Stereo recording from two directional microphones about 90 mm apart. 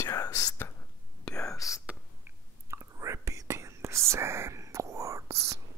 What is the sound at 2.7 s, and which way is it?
Whispering, 35° right (ahead or behind).